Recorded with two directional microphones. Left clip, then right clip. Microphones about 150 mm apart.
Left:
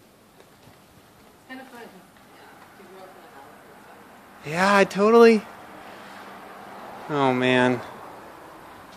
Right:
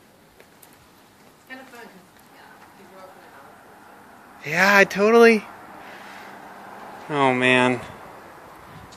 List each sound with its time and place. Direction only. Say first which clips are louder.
4.4 s speech: right 3 dB; 15° left (ahead or behind)
7.1 s speech: right 3 dB; 20° left (ahead or behind)